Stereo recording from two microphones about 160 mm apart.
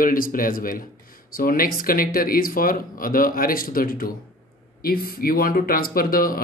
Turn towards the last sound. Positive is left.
turn(degrees=65)  # may be behind; listen again after turning